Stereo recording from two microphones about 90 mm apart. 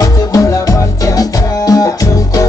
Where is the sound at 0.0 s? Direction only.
35° left (ahead or behind).